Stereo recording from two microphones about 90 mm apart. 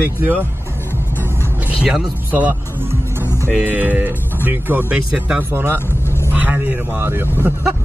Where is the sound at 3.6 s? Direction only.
20° right (ahead or behind).